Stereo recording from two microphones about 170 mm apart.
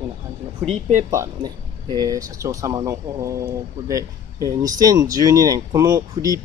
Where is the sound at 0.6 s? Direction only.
40° right (ahead or behind).